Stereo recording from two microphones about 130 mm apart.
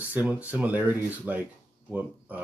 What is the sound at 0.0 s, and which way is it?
Speech, 10° right (ahead or behind).